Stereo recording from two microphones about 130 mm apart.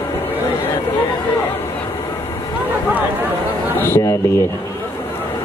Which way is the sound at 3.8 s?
20° left (ahead or behind).